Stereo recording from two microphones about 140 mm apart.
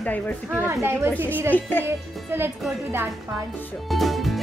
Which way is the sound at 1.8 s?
15° right (ahead or behind).